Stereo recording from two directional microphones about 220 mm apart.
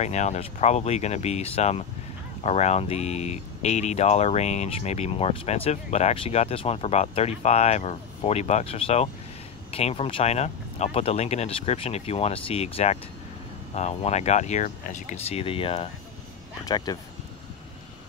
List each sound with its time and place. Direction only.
0.0 s speech: 30° left (ahead or behind)